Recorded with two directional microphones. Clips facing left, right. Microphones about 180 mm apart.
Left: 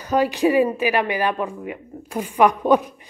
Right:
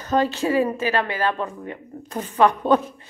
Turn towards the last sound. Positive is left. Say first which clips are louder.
# left 2 dB
turn(degrees=15)  # may be behind; listen again after turning